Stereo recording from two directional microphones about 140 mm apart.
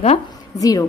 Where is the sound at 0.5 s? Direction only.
25° left (ahead or behind).